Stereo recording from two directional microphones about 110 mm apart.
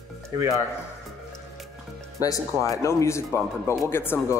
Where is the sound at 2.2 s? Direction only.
30° left (ahead or behind).